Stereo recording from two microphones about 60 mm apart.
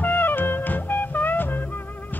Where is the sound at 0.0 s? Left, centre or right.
Left.